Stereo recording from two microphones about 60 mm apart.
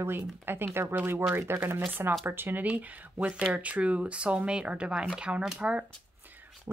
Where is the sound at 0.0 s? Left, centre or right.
Right; by 5.9 s centre.